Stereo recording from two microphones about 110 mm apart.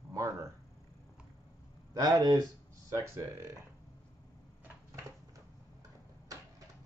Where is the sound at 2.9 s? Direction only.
25° right (ahead or behind).